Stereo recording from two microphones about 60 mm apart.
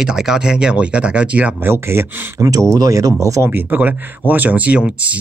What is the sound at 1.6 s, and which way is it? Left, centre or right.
Speech, right.